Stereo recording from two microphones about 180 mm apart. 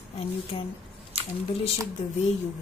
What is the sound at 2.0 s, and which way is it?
Speech, 40° left (ahead or behind).